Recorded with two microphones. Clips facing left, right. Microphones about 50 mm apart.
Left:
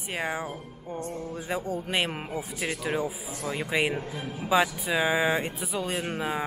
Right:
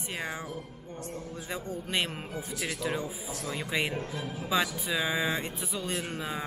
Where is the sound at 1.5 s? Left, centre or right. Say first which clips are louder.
Left 4 dB; centre.